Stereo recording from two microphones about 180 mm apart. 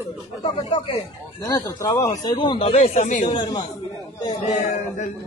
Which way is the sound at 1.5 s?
15° left (ahead or behind).